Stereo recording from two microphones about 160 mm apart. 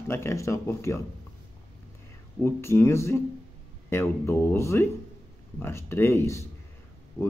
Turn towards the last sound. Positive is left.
turn(degrees=20)  # may be behind; listen again after turning